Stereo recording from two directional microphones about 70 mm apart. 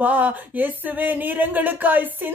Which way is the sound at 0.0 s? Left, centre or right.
Right.